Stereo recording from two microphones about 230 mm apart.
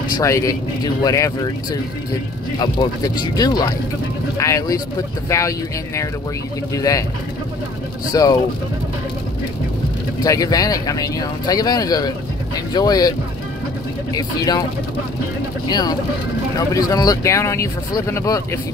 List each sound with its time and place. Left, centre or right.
0.2 s speech: centre
6.7 s speech: centre
8.1 s speech: centre
10.2 s speech: centre
14.1 s speech: centre
15.7 s speech: centre